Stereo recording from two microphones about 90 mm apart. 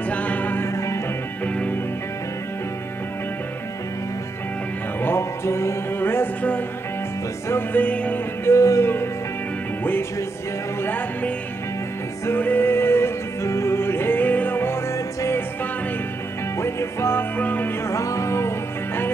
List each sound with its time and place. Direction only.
0.1 s music: 15° left (ahead or behind)
5.0 s music: 30° left (ahead or behind)
8.5 s music: 35° left (ahead or behind)
10.8 s music: 20° left (ahead or behind)
16.5 s music: 30° left (ahead or behind)